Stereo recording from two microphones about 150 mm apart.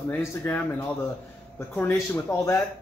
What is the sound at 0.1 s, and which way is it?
A man's voice, 15° left (ahead or behind).